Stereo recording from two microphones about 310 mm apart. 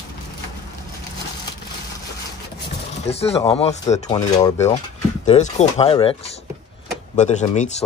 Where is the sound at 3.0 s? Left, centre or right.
Centre.